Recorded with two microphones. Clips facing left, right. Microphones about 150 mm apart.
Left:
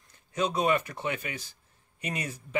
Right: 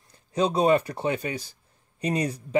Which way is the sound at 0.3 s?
30° right (ahead or behind).